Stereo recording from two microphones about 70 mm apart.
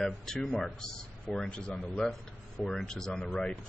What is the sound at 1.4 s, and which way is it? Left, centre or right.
Speech, centre.